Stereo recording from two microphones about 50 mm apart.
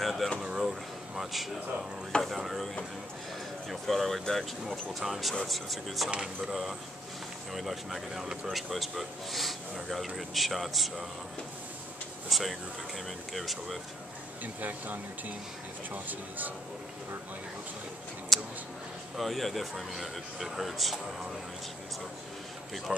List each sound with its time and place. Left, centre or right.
0.0 s a sound: centre
0.4 s drawer open or close: centre
2.2 s speech: centre
3.8 s speech: centre
5.3 s speech: centre
12.3 s speech: centre
14.4 s speech: right
18.3 s a sound: centre
19.1 s speech: centre
22.9 s speech: centre